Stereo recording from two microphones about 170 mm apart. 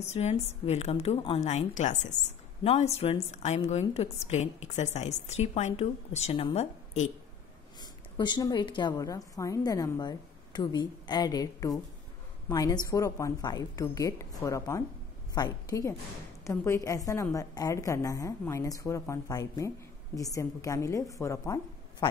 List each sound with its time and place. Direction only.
0.0 s a woman's voice: 40° left (ahead or behind)
7.8 s a woman's voice: 25° left (ahead or behind)